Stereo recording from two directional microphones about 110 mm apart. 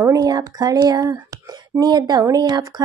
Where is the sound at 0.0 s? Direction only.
35° right (ahead or behind).